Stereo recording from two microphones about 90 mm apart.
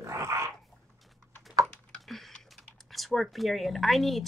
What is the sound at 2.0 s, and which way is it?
Speech, centre (ahead or behind).